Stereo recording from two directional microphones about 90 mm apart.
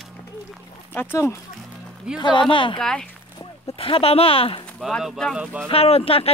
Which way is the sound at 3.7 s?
90° left.